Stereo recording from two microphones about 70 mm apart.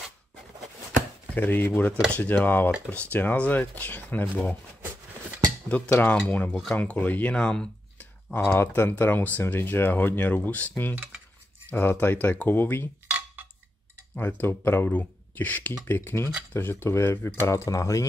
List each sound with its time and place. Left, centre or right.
1.3 s speech: left
5.7 s speech: centre
7.3 s a sound: centre
8.3 s speech: left
11.7 s speech: left
14.1 s speech: left